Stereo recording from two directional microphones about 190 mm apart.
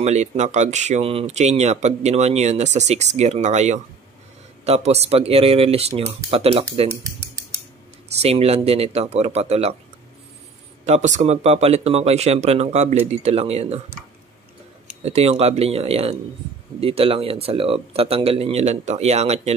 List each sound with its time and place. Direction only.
0.0 s speech: 35° right (ahead or behind)
8.2 s speech: 30° right (ahead or behind)
10.9 s speech: 35° right (ahead or behind)
15.0 s speech: 35° right (ahead or behind)